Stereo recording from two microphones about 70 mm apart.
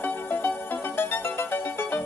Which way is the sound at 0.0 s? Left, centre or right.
Left.